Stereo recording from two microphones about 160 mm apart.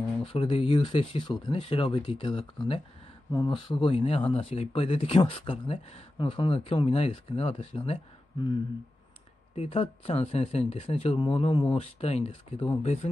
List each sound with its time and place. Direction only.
0.2 s speech: 35° left (ahead or behind)
9.6 s speech: 40° left (ahead or behind)